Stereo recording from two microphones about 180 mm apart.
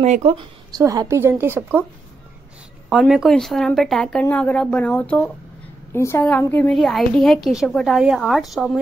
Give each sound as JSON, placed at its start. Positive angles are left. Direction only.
{"t": 0.0, "sound": "speech", "side_deg": -35}
{"t": 0.7, "sound": "a woman's voice", "side_deg": -20}
{"t": 2.9, "sound": "a woman's voice", "side_deg": -5}